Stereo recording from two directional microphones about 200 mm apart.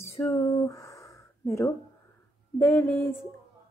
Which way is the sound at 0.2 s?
15° left (ahead or behind).